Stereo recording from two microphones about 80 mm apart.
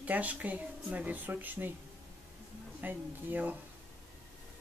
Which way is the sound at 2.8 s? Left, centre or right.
Right.